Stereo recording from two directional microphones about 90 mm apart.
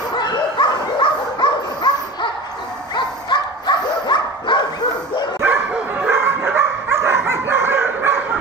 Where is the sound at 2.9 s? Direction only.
55° left (ahead or behind).